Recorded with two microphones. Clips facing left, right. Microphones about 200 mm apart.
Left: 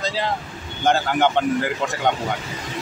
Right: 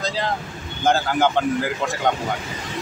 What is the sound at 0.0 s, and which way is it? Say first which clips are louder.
Vehicle: even; centre (ahead or behind).